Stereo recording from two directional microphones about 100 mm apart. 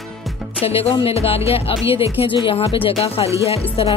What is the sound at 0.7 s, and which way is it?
Speech, 80° left.